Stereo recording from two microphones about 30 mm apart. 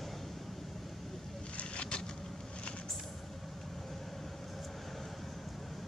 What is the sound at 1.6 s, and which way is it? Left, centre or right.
Vehicle, left.